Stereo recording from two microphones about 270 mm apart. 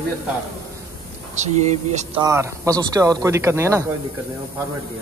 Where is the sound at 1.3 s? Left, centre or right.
Right.